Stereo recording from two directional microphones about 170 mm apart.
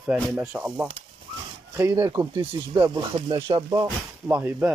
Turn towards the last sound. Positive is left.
turn(degrees=-10)  # may be behind; listen again after turning